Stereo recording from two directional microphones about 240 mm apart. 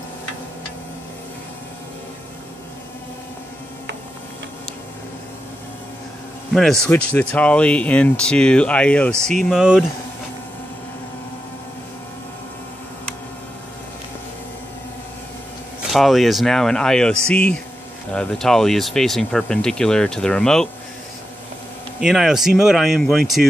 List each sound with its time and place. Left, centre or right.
6.5 s speech: centre
15.9 s speech: centre
22.0 s speech: centre